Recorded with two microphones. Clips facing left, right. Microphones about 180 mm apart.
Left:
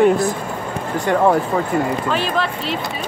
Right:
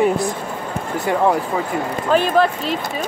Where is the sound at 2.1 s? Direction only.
45° right (ahead or behind).